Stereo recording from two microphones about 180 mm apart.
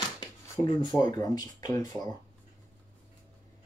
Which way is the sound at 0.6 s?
25° left (ahead or behind).